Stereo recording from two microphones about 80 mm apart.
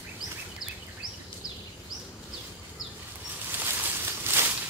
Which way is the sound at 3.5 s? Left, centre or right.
Right.